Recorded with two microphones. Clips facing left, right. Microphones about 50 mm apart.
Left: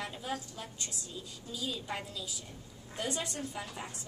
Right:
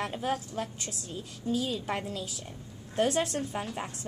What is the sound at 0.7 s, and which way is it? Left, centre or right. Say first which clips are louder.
Speech: right 3 dB; right.